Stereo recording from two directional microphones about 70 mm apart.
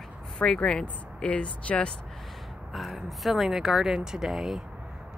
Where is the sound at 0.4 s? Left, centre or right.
Centre.